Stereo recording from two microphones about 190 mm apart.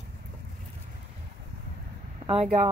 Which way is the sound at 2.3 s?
35° right (ahead or behind).